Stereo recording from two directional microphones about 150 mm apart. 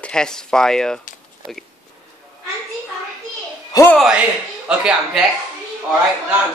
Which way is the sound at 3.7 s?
25° left (ahead or behind).